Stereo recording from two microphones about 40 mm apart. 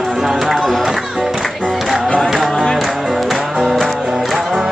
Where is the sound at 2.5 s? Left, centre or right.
Centre.